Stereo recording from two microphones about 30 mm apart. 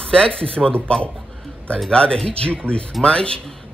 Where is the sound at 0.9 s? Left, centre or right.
Left.